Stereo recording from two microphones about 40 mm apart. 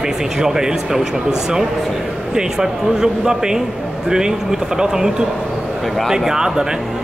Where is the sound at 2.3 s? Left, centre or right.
Centre.